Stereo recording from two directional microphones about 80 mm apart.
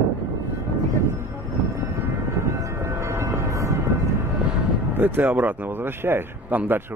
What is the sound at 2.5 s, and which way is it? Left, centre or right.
Train, right.